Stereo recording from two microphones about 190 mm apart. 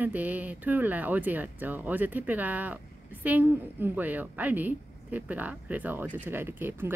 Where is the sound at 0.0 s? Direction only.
10° right (ahead or behind).